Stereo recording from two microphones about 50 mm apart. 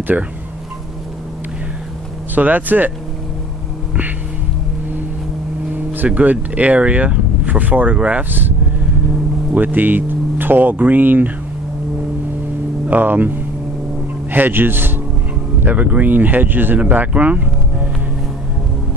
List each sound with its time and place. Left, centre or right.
0.1 s speech: right
2.3 s speech: right
6.0 s speech: right
8.3 s speech: right
12.8 s speech: right
15.6 s speech: right